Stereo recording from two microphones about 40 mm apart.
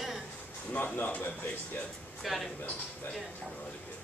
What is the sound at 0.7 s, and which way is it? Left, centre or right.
Speech, left.